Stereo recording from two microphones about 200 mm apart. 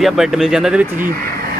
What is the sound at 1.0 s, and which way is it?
Speech, 50° right (ahead or behind).